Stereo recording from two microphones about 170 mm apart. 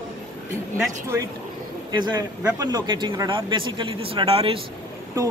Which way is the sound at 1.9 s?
25° right (ahead or behind).